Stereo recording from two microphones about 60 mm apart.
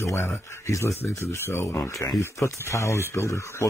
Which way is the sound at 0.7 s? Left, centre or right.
Left.